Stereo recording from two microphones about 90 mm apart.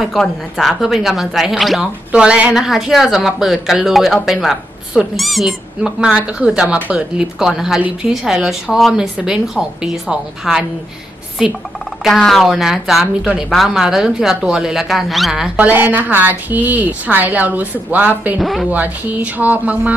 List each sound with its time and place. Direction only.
0.0 s speech: centre (ahead or behind)
2.1 s speech: 15° right (ahead or behind)
15.5 s a woman's voice: 20° right (ahead or behind)
18.4 s speech: centre (ahead or behind)
18.7 s speech: 20° right (ahead or behind)